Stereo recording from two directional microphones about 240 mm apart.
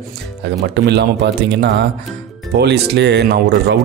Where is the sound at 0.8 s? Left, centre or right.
Right.